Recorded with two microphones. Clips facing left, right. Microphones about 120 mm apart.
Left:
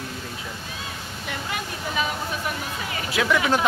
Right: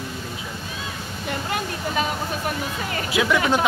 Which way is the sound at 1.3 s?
40° right (ahead or behind).